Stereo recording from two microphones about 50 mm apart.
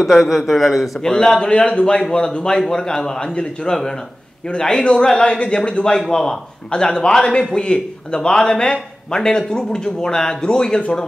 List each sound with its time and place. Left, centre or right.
0.0 s a man's voice: centre
1.0 s a man's voice: centre